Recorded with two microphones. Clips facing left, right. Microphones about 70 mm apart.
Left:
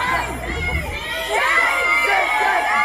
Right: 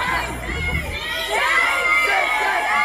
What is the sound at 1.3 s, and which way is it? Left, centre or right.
Crowd, centre.